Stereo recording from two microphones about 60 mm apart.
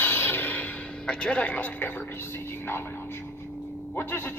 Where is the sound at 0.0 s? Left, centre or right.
Left.